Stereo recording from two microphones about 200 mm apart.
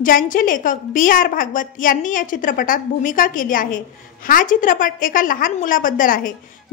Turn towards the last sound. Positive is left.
turn(degrees=45)  # may be behind; listen again after turning